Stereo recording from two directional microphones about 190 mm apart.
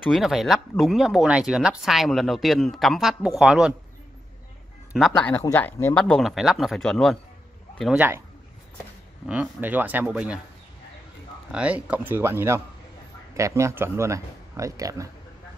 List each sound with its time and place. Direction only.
0.1 s speech: centre (ahead or behind)
4.9 s speech: centre (ahead or behind)
5.3 s speech: 10° left (ahead or behind)
9.2 s speech: 5° right (ahead or behind)
11.5 s speech: 5° right (ahead or behind)